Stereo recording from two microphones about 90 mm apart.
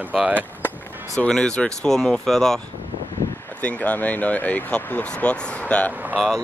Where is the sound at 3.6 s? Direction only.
15° left (ahead or behind).